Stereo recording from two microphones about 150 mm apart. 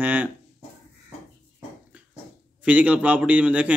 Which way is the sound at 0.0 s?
10° right (ahead or behind).